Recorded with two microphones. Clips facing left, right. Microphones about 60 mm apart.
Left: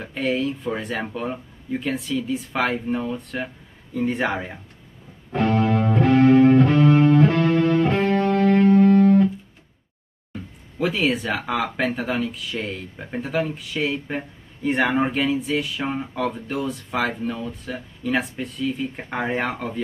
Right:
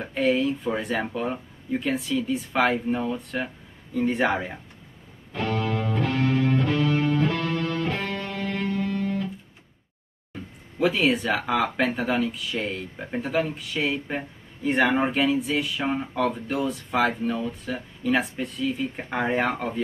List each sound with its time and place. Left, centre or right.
0.0 s speech: centre
5.3 s music: left
10.8 s speech: centre